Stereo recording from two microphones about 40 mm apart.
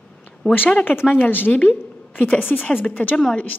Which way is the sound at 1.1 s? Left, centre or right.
Left.